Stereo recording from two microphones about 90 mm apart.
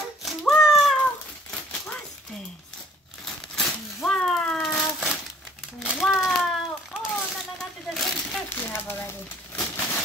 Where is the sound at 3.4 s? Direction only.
5° left (ahead or behind).